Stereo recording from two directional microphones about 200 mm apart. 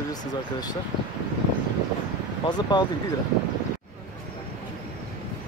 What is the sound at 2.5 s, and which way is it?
Speech, 20° left (ahead or behind).